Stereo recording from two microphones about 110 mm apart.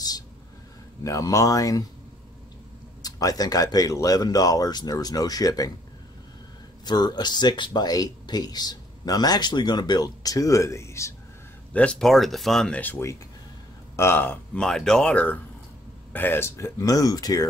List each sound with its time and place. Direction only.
1.0 s speech: 30° left (ahead or behind)
3.0 s speech: 35° left (ahead or behind)
6.8 s speech: 40° left (ahead or behind)
11.7 s speech: 10° left (ahead or behind); by 17.5 s 35° left (ahead or behind)